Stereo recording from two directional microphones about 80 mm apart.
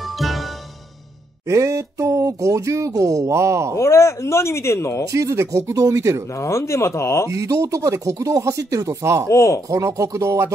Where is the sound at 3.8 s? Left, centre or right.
Left.